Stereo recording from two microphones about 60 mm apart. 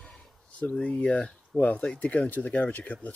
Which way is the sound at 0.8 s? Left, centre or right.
Left.